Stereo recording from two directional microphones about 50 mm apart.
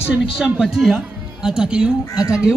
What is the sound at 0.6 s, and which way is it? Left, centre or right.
A man's voice, centre.